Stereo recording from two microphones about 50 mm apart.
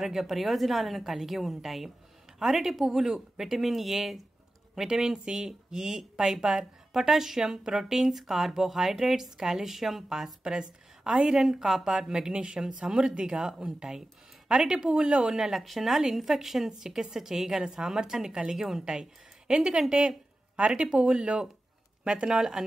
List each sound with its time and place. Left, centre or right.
0.0 s speech: centre; by 15.1 s right
15.1 s speech: centre
20.5 s speech: right